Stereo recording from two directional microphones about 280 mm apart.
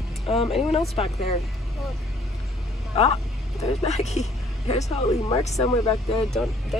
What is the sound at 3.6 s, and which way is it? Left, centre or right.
Speech, left.